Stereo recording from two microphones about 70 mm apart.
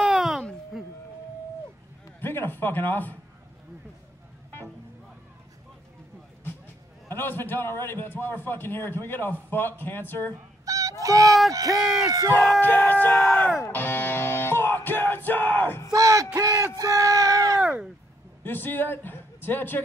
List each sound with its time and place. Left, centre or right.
0.0 s a sound: centre
2.1 s a man's voice: left
7.1 s a man's voice: left
10.6 s honk: right
11.2 s speech: centre
11.5 s speech: right
12.4 s speech: left
13.7 s music: left
15.9 s bellow: right
16.3 s a sound: right
17.6 s a sound: centre
18.4 s a man's voice: left